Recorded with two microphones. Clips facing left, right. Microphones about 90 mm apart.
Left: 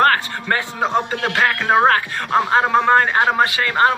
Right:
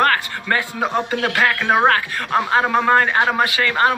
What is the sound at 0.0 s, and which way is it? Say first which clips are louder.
Speech: left 2 dB; 30° left (ahead or behind).